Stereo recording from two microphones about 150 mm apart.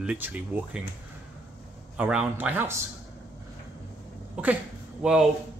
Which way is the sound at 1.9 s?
10° right (ahead or behind).